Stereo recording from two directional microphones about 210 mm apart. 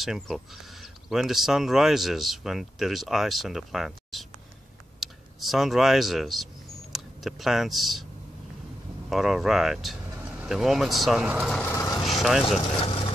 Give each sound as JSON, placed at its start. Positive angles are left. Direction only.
{"t": 0.0, "sound": "speech", "side_deg": 0}
{"t": 9.1, "sound": "speech", "side_deg": 0}
{"t": 11.7, "sound": "speech", "side_deg": 15}
{"t": 12.0, "sound": "speech", "side_deg": 0}
{"t": 12.7, "sound": "vehicle", "side_deg": 25}